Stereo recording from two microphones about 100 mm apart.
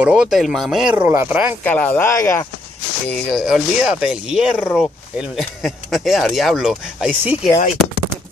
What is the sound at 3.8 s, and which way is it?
Speech, 10° right (ahead or behind).